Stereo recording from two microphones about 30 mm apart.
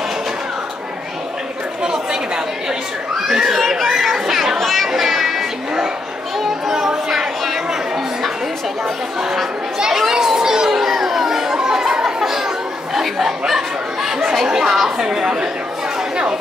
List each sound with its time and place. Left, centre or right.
1.8 s chatter: right
3.3 s a child's voice: centre
3.5 s speech: centre
4.0 s chatter: centre
4.6 s children playing: centre
4.8 s children playing: centre
10.1 s children playing: centre
10.7 s chatter: centre
13.5 s snicker: centre
15.0 s a woman's voice: right